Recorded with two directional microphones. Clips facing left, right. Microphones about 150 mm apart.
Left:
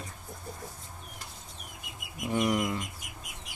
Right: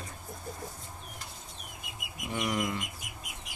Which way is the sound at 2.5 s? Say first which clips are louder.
Left 3 dB; 15° left (ahead or behind).